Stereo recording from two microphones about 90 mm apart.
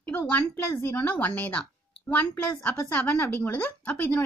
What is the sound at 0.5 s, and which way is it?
Speech, 25° left (ahead or behind).